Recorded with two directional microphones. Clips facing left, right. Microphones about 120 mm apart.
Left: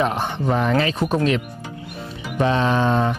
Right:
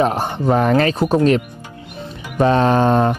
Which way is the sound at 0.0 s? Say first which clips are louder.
Right 4 dB; 40° right (ahead or behind).